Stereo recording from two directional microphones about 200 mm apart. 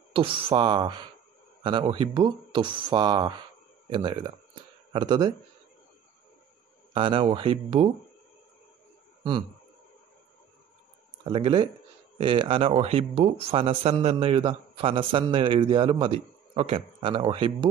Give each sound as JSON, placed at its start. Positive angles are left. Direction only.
{"t": 0.1, "sound": "speech", "side_deg": -25}
{"t": 6.9, "sound": "speech", "side_deg": -25}
{"t": 11.2, "sound": "speech", "side_deg": -25}